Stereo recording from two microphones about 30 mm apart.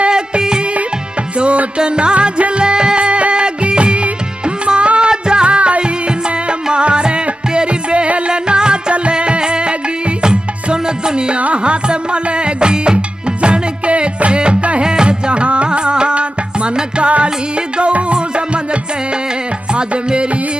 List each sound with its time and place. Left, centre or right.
0.1 s music: right
1.8 s music: right
3.1 s music: right
11.3 s music: right
14.8 s music: right
18.1 s music: right
19.7 s music: right